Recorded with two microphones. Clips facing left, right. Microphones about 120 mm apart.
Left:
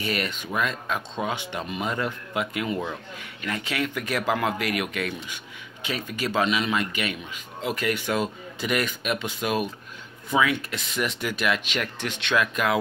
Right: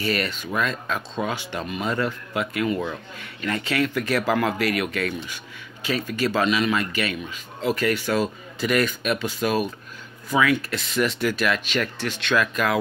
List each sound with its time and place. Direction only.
0.0 s speech: 15° left (ahead or behind)